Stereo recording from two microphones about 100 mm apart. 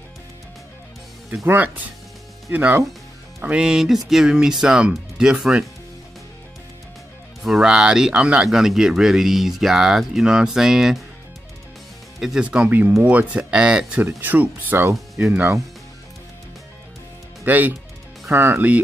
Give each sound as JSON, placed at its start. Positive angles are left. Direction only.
{"t": 1.3, "sound": "speech", "side_deg": -20}
{"t": 7.4, "sound": "speech", "side_deg": -5}
{"t": 12.2, "sound": "speech", "side_deg": -5}
{"t": 17.5, "sound": "speech", "side_deg": -20}